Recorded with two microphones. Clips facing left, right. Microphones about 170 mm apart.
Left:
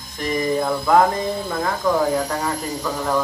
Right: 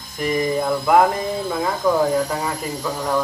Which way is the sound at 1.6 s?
5° right (ahead or behind).